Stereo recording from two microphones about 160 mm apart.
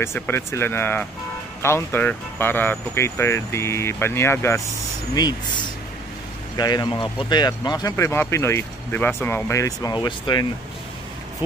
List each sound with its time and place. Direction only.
0.0 s speech: 15° left (ahead or behind)
6.5 s speech: 25° left (ahead or behind)